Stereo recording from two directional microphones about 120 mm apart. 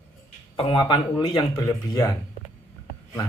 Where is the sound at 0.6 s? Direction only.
40° left (ahead or behind).